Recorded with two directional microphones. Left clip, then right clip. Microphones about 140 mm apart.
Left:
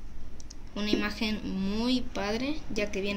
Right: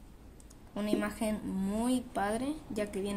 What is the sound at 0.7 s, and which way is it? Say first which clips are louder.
Speech: left 3 dB; 40° right (ahead or behind).